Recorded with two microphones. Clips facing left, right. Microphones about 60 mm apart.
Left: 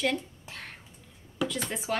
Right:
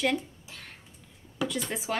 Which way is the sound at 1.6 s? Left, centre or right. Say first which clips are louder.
Right 1 dB; centre.